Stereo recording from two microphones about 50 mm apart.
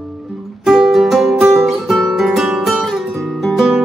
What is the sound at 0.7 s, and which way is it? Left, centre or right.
Music, centre.